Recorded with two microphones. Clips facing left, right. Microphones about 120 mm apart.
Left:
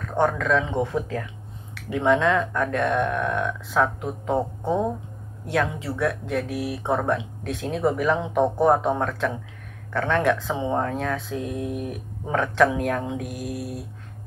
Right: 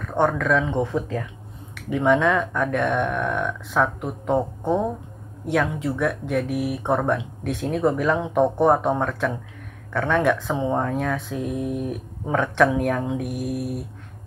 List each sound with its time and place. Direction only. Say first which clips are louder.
0.2 s speech: right 1 dB; centre (ahead or behind)